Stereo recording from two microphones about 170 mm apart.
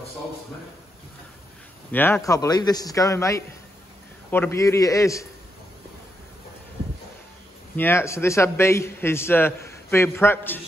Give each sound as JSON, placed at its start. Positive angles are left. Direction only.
{"t": 1.9, "sound": "a man's voice", "side_deg": 10}
{"t": 7.7, "sound": "a man's voice", "side_deg": 15}